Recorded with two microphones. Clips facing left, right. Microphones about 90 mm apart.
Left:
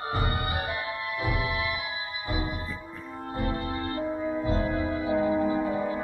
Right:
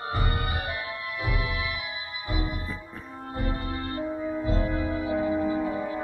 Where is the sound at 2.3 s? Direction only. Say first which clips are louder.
Even; 25° left (ahead or behind).